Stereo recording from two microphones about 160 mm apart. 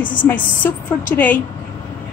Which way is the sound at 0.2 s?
10° left (ahead or behind).